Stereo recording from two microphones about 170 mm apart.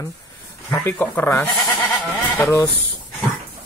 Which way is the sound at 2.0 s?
Centre (ahead or behind).